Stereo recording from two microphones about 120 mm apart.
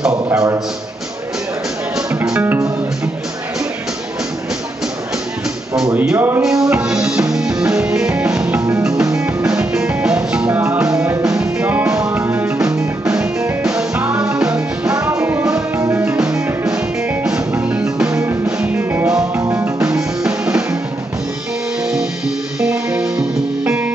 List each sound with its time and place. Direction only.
0.1 s a sound: 25° right (ahead or behind)
2.4 s music: 20° right (ahead or behind)
5.9 s speech: 15° right (ahead or behind)
6.4 s music: 5° right (ahead or behind)
8.6 s music: 25° right (ahead or behind)
9.5 s music: 5° right (ahead or behind)
12.5 s music: 5° right (ahead or behind)
16.2 s music: 5° right (ahead or behind)
18.1 s music: 25° right (ahead or behind)
19.8 s music: 10° right (ahead or behind)
22.6 s music: 5° right (ahead or behind)